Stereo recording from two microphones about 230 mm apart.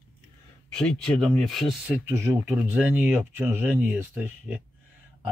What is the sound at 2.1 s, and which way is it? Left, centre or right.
Speech, centre.